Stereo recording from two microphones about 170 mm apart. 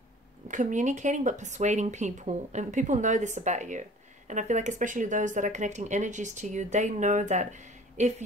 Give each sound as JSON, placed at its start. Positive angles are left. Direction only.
{"t": 0.5, "sound": "speech", "side_deg": -45}